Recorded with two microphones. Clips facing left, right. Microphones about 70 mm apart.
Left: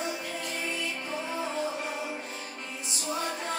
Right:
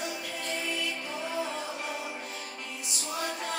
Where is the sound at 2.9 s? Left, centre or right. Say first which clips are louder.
Left 2 dB; left.